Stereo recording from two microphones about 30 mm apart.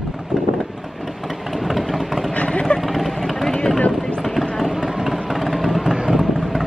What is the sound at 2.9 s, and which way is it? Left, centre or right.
Vehicle, centre.